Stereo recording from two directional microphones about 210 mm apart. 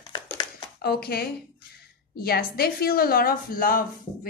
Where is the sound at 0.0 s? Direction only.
20° left (ahead or behind).